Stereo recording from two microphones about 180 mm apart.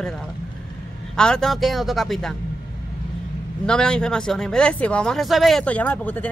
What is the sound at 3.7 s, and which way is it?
Speech, 5° left (ahead or behind).